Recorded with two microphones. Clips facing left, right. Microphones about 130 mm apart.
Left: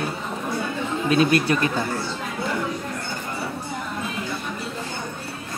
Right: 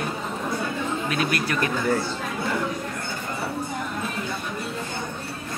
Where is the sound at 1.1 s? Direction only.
25° left (ahead or behind).